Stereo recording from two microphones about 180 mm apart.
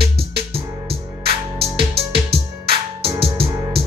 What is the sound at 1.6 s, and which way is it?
Music, 65° right (ahead or behind).